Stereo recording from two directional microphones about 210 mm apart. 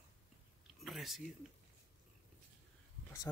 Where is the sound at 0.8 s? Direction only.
Centre (ahead or behind).